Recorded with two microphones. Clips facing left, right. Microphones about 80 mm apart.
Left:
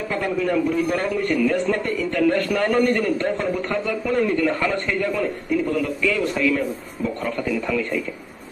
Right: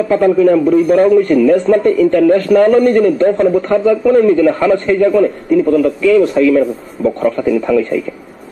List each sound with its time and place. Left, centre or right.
0.1 s a man's voice: right
4.0 s a man's voice: right